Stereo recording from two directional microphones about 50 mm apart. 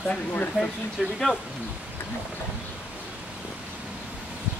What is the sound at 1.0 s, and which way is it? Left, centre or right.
Speech, centre.